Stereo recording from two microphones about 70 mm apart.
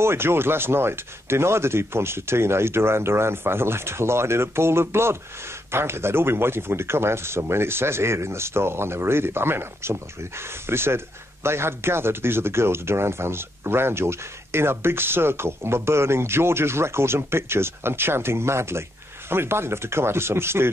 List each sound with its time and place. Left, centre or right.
0.0 s speech: right